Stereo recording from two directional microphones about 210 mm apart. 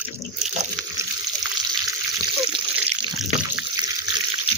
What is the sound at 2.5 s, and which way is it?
Water, 25° right (ahead or behind).